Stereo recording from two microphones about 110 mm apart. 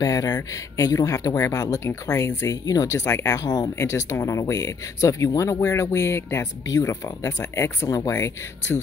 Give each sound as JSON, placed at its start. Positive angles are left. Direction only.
{"t": 0.0, "sound": "speech", "side_deg": 35}